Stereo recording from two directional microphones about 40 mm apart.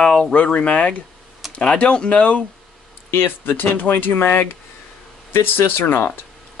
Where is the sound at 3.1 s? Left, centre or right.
Left.